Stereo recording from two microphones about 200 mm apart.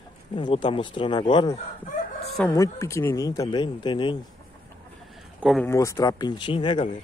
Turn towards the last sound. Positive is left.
turn(degrees=25)  # may be behind; listen again after turning